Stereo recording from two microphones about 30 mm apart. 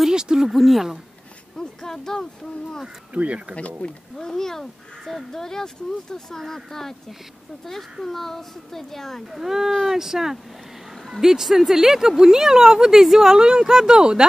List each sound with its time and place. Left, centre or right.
0.1 s speech: right
0.5 s speech: centre
1.6 s speech: centre
3.1 s speech: right
3.8 s speech: left
4.2 s speech: centre
8.0 s speech: centre
9.3 s speech: centre